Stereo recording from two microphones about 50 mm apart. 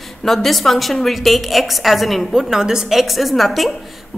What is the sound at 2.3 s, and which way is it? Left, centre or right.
A woman's voice, centre.